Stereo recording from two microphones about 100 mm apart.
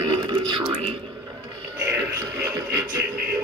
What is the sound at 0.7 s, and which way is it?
Speech, 80° right.